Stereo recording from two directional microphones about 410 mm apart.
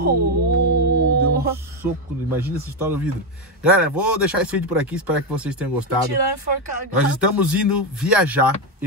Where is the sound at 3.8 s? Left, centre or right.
Centre.